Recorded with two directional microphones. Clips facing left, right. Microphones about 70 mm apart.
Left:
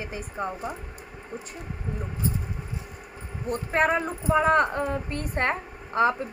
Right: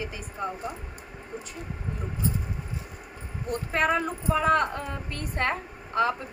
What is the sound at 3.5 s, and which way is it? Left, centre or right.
A woman's voice, left.